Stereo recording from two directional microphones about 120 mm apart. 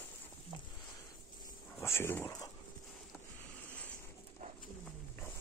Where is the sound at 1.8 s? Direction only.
20° left (ahead or behind).